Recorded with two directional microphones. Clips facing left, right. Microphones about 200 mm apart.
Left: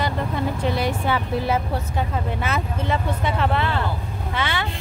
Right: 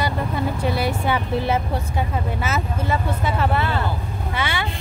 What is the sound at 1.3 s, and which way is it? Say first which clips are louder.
Speech: right 1 dB; 25° right (ahead or behind).